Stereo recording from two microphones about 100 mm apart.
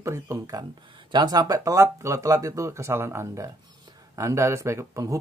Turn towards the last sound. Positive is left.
turn(degrees=-35)  # may be behind; listen again after turning